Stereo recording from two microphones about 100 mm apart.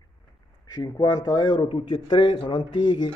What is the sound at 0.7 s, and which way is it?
Speech, 45° left (ahead or behind).